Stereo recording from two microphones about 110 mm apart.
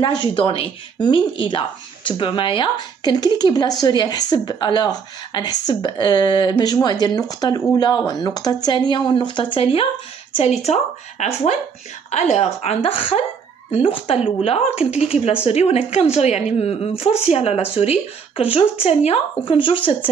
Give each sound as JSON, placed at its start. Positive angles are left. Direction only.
{"t": 0.0, "sound": "a woman's voice", "side_deg": 50}
{"t": 10.3, "sound": "a woman's voice", "side_deg": 75}
{"t": 19.4, "sound": "speech", "side_deg": 50}